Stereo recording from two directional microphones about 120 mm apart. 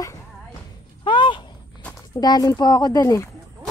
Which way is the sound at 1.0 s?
40° left (ahead or behind).